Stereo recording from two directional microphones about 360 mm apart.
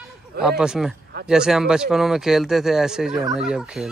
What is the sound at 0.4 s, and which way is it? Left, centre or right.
Speech, centre.